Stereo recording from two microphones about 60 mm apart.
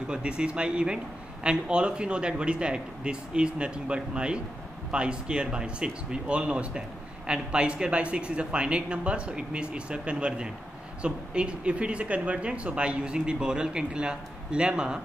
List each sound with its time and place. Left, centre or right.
0.1 s a man's voice: centre